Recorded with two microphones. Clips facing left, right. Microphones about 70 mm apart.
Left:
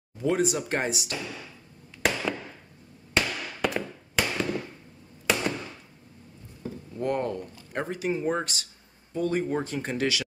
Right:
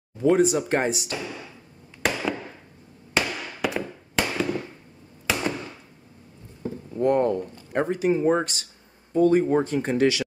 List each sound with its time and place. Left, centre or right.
0.2 s speech: right
0.6 s speech: centre
2.0 s fireworks: centre
3.2 s firecracker: centre
5.2 s a sound: centre
6.6 s a sound: right
7.7 s speech: right